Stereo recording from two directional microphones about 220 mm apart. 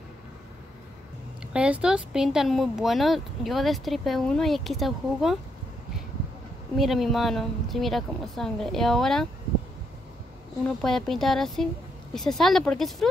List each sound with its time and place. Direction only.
1.5 s speech: 5° right (ahead or behind)
6.8 s speech: centre (ahead or behind)
10.8 s speech: centre (ahead or behind)